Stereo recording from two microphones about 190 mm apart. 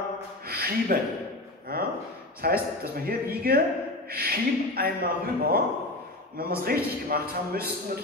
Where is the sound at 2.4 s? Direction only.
50° right (ahead or behind).